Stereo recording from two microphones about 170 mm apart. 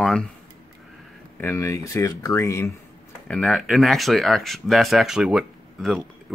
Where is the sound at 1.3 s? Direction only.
15° left (ahead or behind).